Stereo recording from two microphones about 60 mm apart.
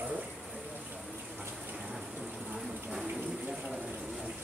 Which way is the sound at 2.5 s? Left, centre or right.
Centre.